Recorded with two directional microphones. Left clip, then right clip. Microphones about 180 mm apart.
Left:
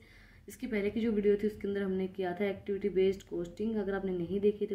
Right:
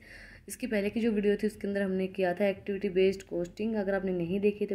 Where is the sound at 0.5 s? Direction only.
35° right (ahead or behind).